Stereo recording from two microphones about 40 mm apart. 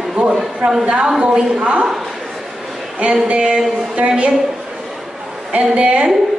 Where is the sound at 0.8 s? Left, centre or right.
Right.